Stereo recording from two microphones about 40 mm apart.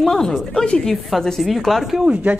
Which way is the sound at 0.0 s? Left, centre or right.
Centre.